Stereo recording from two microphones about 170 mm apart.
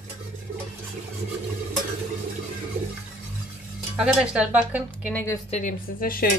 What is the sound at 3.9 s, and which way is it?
A woman's voice, 5° right (ahead or behind).